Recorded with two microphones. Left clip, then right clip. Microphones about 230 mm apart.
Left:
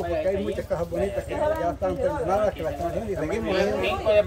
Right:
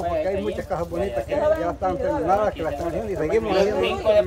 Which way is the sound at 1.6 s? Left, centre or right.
Centre.